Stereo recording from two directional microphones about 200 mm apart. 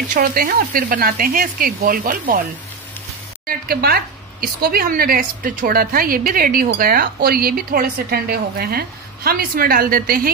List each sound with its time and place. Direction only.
0.1 s speech: 45° right (ahead or behind)
3.4 s speech: 50° right (ahead or behind)